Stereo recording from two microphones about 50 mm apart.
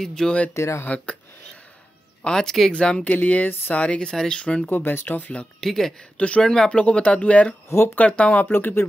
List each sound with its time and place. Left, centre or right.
0.0 s speech: centre
0.6 s speech: left
0.8 s speech: left
2.2 s speech: centre
3.1 s speech: left
3.7 s speech: left
4.6 s speech: left
5.6 s speech: centre
6.1 s speech: left
8.5 s speech: left